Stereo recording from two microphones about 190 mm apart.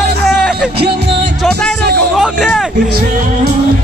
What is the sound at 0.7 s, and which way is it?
Music, 60° right (ahead or behind).